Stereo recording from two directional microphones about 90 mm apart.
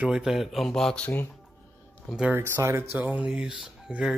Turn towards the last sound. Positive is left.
turn(degrees=-10)  # may be behind; listen again after turning